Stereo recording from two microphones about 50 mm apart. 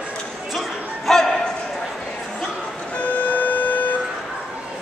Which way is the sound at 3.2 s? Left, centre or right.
Left.